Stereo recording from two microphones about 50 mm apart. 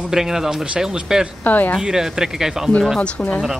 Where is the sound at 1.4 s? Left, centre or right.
Left.